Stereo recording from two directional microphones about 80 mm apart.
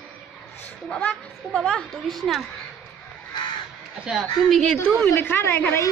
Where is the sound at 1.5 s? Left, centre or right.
Centre.